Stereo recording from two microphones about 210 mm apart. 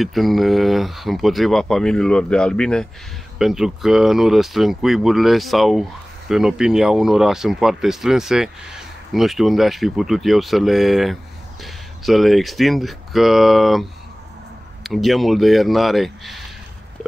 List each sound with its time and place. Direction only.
0.0 s speech: centre (ahead or behind)